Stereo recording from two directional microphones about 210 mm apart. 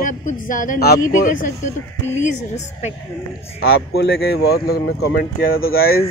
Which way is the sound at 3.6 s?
50° left (ahead or behind).